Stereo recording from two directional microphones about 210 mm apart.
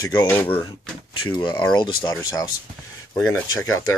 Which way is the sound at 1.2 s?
20° left (ahead or behind).